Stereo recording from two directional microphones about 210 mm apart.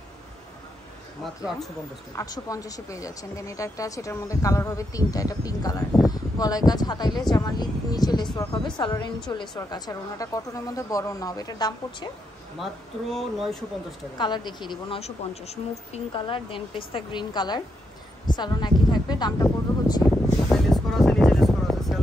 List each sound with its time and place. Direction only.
2.1 s a woman's voice: 15° left (ahead or behind)
13.1 s speech: centre (ahead or behind)
14.1 s a woman's voice: 20° left (ahead or behind)
20.4 s music: centre (ahead or behind)